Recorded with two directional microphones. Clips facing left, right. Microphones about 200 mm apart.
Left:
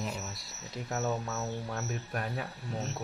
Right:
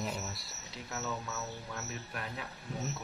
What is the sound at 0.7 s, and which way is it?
Speech, 50° left (ahead or behind).